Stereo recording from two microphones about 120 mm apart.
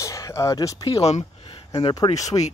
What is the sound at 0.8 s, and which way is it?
Speech, 50° left (ahead or behind).